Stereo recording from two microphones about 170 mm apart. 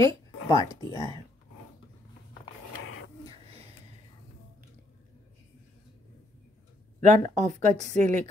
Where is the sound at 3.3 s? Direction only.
35° right (ahead or behind).